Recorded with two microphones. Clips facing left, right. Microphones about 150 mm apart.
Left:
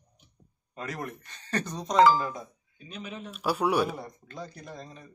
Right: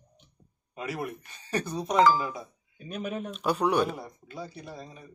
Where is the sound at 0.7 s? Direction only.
10° right (ahead or behind).